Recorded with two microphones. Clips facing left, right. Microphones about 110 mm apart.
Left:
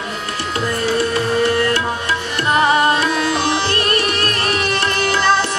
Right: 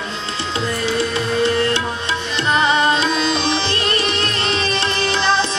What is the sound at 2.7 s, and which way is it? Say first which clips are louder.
Music: left 1 dB; 25° right (ahead or behind).